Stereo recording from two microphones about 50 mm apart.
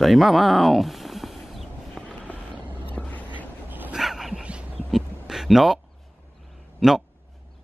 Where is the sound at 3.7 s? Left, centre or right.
Right.